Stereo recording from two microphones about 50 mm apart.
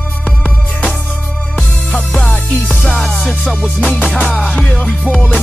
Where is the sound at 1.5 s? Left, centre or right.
Left.